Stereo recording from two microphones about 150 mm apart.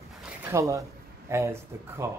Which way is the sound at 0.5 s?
20° right (ahead or behind).